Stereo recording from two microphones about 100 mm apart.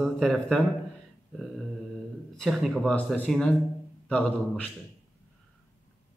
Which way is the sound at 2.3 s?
Centre (ahead or behind).